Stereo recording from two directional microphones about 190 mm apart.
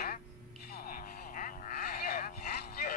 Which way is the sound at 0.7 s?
50° left (ahead or behind).